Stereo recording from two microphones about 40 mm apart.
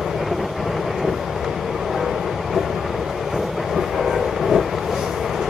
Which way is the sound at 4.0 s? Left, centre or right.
Centre.